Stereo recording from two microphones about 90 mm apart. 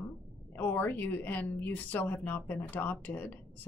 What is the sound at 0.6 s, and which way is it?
Speech, 20° left (ahead or behind).